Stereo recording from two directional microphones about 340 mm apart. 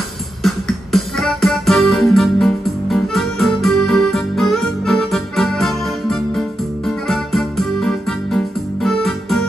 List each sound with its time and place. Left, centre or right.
0.4 s music: centre
7.1 s keyboard: centre